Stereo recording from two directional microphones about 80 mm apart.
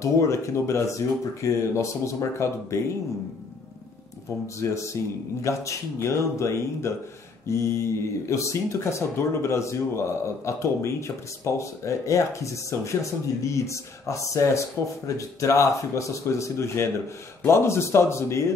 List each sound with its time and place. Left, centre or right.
0.0 s speech: left
4.6 s speech: left